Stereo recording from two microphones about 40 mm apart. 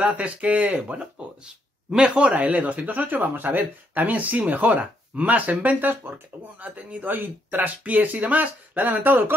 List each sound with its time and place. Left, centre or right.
0.0 s speech: right
1.1 s speech: right
7.5 s speech: right